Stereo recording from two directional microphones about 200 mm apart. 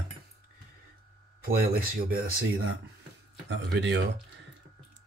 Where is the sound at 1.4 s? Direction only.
50° right (ahead or behind).